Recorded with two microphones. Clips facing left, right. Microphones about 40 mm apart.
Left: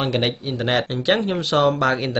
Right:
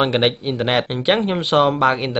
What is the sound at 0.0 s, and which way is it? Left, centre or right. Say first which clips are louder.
Speech: right 5 dB; right.